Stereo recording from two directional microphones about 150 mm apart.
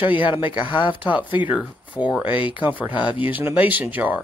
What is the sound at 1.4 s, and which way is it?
Speech, 5° right (ahead or behind).